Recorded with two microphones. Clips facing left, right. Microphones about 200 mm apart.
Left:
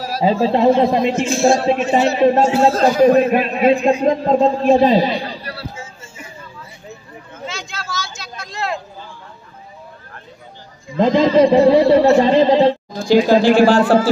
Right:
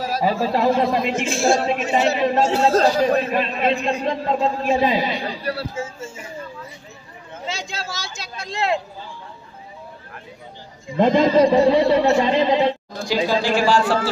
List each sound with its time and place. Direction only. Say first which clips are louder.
0.2 s speech: left 6 dB; 20° left (ahead or behind)
2.8 s a man's voice: left 6 dB; 45° left (ahead or behind)
7.5 s a sound: left 2 dB; 35° right (ahead or behind)
11.0 s a man's voice: left 2 dB; 5° right (ahead or behind)
11.4 s a man's voice: left 4 dB; 30° left (ahead or behind); by 14.0 s 55° left (ahead or behind)